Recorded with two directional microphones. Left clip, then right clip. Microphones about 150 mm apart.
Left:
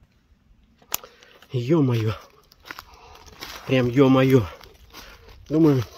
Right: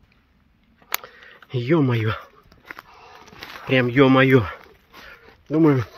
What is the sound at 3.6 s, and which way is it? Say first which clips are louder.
Speech: right 2 dB; 25° left (ahead or behind).